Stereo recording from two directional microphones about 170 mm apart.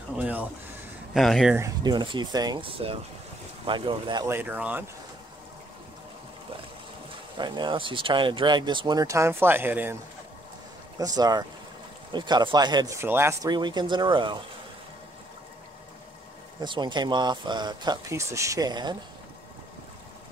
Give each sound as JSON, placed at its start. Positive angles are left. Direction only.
{"t": 0.2, "sound": "speech", "side_deg": -10}
{"t": 1.6, "sound": "speech", "side_deg": -25}
{"t": 4.3, "sound": "speech", "side_deg": -10}
{"t": 7.3, "sound": "speech", "side_deg": -25}
{"t": 11.0, "sound": "speech", "side_deg": -20}
{"t": 16.5, "sound": "speech", "side_deg": -25}